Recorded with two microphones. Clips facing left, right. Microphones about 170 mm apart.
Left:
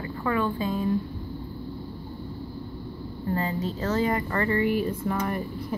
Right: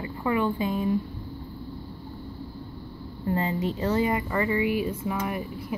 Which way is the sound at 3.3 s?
20° right (ahead or behind).